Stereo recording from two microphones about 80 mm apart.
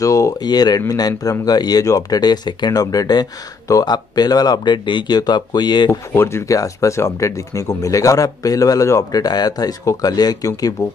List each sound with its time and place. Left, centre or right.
0.0 s speech: left
0.4 s speech: left
5.9 s speech: left
9.2 s speech: left